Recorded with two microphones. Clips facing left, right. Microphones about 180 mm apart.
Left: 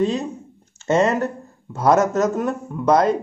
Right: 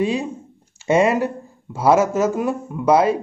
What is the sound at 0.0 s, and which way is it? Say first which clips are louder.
Speech: even; 10° right (ahead or behind).